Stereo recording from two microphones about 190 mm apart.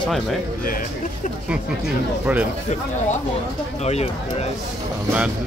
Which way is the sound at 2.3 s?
5° right (ahead or behind).